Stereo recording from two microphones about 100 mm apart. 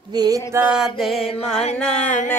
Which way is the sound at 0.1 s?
40° right (ahead or behind).